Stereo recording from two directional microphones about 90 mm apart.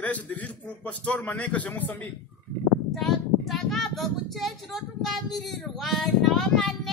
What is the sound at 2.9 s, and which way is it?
Speech, centre (ahead or behind).